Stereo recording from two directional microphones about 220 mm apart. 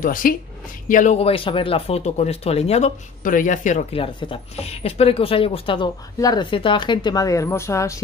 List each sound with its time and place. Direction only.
0.0 s speech: 40° left (ahead or behind); by 8.0 s 15° left (ahead or behind)